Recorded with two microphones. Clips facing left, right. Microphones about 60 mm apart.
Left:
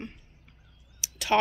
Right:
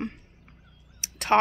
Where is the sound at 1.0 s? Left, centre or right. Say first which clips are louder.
Right 3 dB; right.